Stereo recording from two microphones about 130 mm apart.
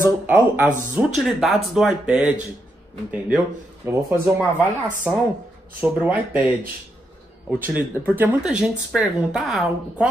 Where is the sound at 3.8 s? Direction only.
20° right (ahead or behind).